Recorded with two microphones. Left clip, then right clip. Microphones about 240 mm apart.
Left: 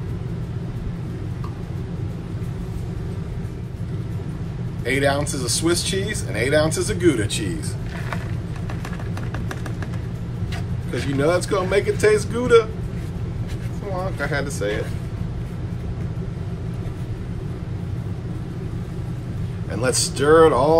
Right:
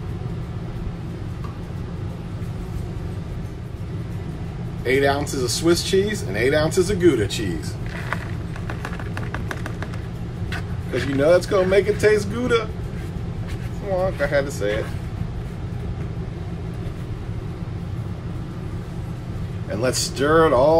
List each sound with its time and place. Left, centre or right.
4.8 s speech: left
10.9 s speech: left
14.2 s speech: left
19.7 s speech: left